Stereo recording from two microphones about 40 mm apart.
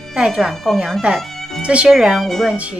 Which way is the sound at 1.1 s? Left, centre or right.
Right.